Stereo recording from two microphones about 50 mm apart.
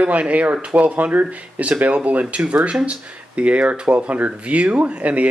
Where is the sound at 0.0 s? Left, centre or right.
Right.